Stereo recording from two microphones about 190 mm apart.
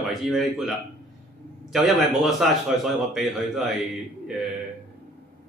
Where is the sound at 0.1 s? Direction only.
Centre (ahead or behind).